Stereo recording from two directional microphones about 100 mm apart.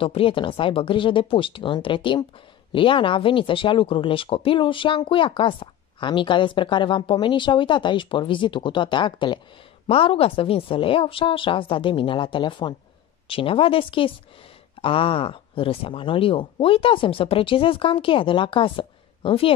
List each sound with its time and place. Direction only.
0.0 s speech: 65° left (ahead or behind)
9.8 s speech: 70° left (ahead or behind)
13.3 s speech: 65° left (ahead or behind)